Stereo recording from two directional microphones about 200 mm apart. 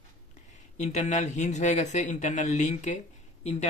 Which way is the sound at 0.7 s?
35° left (ahead or behind).